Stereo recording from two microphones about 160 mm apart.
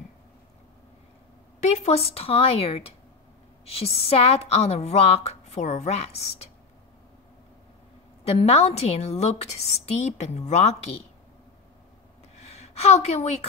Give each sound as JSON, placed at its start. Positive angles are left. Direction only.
{"t": 1.6, "sound": "a woman's voice", "side_deg": 40}
{"t": 8.2, "sound": "a woman's voice", "side_deg": 40}
{"t": 12.7, "sound": "a woman's voice", "side_deg": 40}